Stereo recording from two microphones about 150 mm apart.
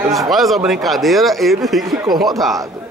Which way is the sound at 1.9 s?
25° right (ahead or behind).